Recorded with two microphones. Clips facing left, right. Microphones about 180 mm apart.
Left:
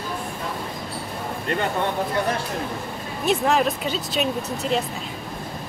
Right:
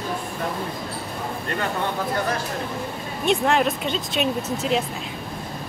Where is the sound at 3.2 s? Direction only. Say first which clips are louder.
Even; centre (ahead or behind).